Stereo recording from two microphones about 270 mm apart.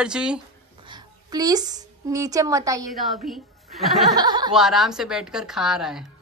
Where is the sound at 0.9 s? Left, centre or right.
Centre.